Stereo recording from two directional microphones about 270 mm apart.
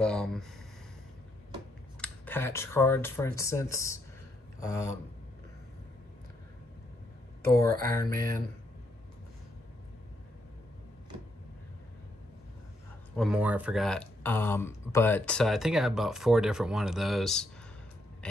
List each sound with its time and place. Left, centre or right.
0.0 s speech: centre
2.0 s speech: centre
4.6 s a sound: centre
7.5 s speech: centre
13.1 s speech: centre
18.2 s a sound: centre